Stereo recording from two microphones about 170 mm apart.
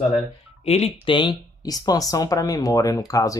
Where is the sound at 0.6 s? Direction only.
40° left (ahead or behind).